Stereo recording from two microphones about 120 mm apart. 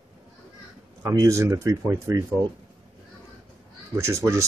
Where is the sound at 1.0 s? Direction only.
25° right (ahead or behind).